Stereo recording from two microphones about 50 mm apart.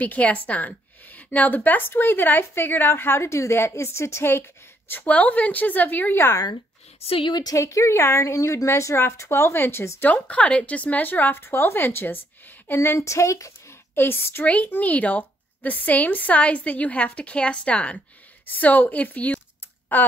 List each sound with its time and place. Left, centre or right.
0.0 s a woman's voice: left
3.3 s a woman's voice: left
5.0 s a woman's voice: left
7.5 s a woman's voice: left
9.3 s a woman's voice: left
10.0 s a woman's voice: left
12.6 s a woman's voice: left
13.0 s speech: left
13.9 s a woman's voice: left
14.4 s a woman's voice: left
18.5 s a woman's voice: left